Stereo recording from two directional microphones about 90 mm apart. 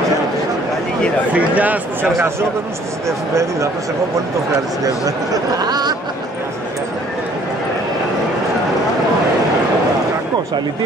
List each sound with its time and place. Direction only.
1.3 s speech: 15° right (ahead or behind)
3.1 s speech: 35° right (ahead or behind)
4.8 s speech: 45° right (ahead or behind)